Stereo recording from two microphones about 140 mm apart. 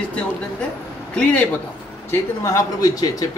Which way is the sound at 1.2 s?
10° left (ahead or behind).